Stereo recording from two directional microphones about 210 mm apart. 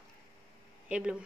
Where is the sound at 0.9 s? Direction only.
5° right (ahead or behind).